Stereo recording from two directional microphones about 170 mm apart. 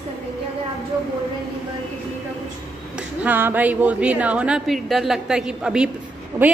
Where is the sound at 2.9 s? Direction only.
10° right (ahead or behind).